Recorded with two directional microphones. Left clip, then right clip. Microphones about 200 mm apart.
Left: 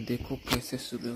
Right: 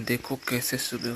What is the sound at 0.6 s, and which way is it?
Speech, 10° right (ahead or behind).